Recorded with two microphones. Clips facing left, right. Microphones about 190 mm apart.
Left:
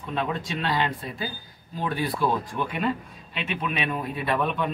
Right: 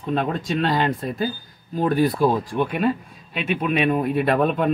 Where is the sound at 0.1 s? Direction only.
45° right (ahead or behind).